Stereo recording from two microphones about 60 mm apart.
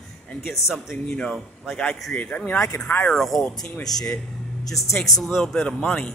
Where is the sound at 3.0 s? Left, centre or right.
Centre.